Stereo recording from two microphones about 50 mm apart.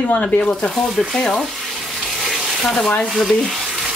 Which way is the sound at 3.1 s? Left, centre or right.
Centre.